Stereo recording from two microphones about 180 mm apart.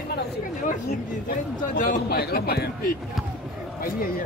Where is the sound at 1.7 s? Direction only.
50° left (ahead or behind).